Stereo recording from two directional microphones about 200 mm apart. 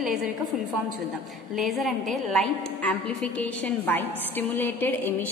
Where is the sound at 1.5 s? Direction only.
Centre (ahead or behind).